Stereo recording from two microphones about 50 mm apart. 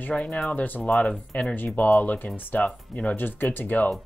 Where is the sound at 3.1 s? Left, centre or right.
Left.